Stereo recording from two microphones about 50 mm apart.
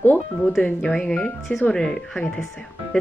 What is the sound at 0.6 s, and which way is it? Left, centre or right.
A child's voice, centre.